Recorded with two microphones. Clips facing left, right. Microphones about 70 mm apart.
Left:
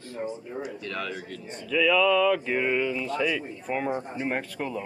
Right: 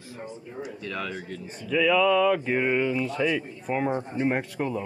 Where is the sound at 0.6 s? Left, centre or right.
Centre.